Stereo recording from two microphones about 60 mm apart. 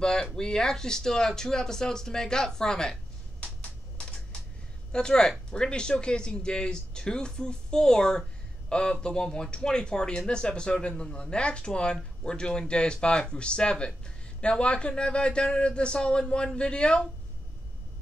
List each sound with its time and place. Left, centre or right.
0.0 s speech: centre
3.3 s a sound: centre
4.9 s speech: centre